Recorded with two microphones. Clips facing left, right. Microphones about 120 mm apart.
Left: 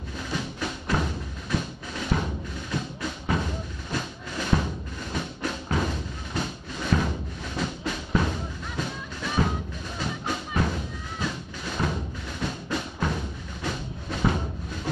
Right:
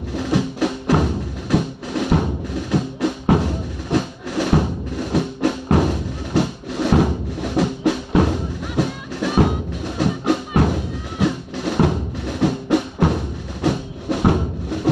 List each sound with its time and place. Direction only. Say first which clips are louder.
0.1 s music: right 12 dB; 75° right (ahead or behind)